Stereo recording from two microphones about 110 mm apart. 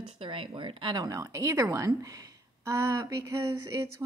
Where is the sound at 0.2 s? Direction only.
55° right (ahead or behind).